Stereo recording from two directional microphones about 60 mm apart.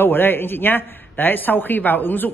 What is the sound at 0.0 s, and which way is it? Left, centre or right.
Speech, left.